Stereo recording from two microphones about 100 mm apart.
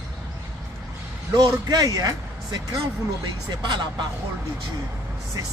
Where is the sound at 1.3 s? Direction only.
40° right (ahead or behind).